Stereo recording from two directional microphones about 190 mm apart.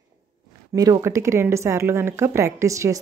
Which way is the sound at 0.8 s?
15° right (ahead or behind).